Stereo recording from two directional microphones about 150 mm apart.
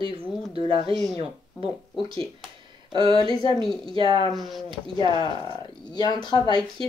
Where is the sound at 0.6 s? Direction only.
35° right (ahead or behind).